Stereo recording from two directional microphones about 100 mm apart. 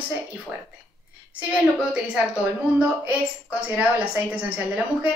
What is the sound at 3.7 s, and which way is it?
Speech, 15° right (ahead or behind).